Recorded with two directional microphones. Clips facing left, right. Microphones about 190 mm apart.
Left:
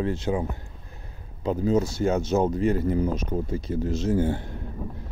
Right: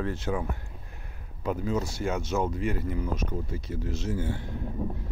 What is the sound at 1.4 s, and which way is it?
Speech, 30° left (ahead or behind).